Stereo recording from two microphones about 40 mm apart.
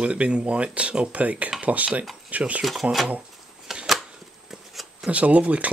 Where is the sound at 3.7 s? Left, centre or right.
Centre.